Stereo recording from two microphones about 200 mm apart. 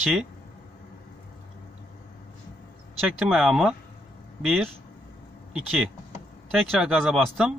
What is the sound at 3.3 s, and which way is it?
Speech, centre (ahead or behind).